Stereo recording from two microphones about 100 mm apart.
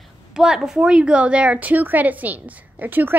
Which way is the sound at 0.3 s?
5° right (ahead or behind).